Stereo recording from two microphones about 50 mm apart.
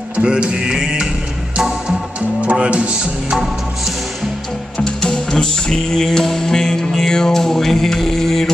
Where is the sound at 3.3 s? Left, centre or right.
Centre.